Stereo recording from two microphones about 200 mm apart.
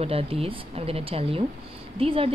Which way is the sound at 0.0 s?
30° right (ahead or behind).